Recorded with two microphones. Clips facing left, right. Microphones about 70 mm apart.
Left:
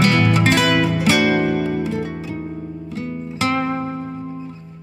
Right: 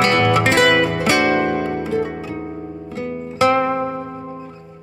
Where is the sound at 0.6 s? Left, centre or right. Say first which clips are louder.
Right 1 dB; right.